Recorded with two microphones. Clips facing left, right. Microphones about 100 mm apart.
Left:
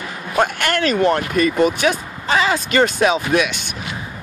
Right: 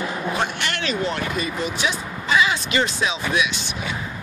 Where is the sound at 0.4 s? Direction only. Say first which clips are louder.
Left 7 dB; 50° left (ahead or behind).